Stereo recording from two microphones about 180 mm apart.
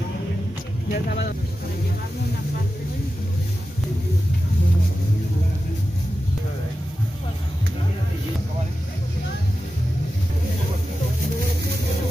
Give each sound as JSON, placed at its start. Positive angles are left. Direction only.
{"t": 0.9, "sound": "speech", "side_deg": 60}